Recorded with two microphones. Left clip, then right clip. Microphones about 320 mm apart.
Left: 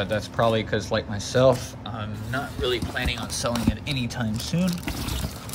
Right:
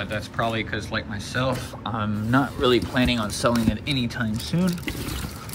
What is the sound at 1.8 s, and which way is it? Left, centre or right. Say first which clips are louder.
Speech: right 10 dB; centre.